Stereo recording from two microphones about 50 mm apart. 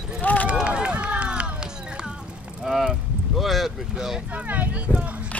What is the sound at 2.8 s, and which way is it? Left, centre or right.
Boat, centre.